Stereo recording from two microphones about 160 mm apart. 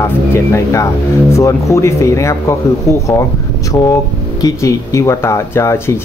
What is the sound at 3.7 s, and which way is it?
Speech, 25° left (ahead or behind).